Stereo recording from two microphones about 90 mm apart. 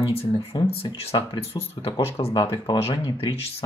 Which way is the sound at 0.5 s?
55° left (ahead or behind).